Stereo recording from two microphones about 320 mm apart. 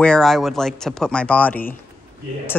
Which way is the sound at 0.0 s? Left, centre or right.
Centre.